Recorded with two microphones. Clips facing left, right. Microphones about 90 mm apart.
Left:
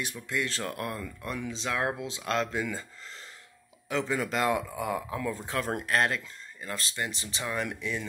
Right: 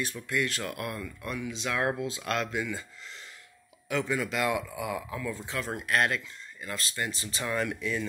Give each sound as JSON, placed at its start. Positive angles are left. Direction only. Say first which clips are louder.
{"t": 0.0, "sound": "speech", "louder": "right 2 dB", "side_deg": 20}
{"t": 3.9, "sound": "speech", "louder": "even", "side_deg": 30}